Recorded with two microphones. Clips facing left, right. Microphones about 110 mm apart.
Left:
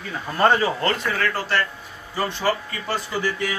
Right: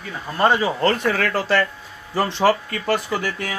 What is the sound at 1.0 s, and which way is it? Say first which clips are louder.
Speech: right 4 dB; 90° right.